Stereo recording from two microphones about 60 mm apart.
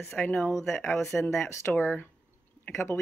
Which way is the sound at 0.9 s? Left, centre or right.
Centre.